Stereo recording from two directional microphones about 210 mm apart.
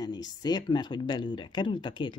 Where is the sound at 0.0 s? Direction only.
20° left (ahead or behind).